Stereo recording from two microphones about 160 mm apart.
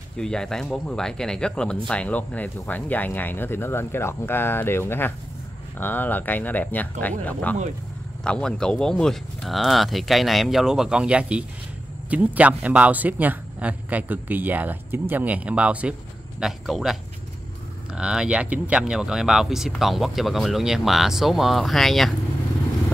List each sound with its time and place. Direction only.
0.2 s speech: 5° left (ahead or behind)